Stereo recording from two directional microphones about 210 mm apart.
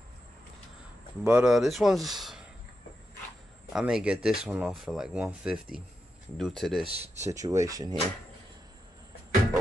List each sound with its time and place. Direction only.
1.2 s speech: 5° right (ahead or behind)
3.7 s speech: 5° right (ahead or behind)
6.9 s speech: 30° right (ahead or behind)
7.2 s speech: 15° right (ahead or behind)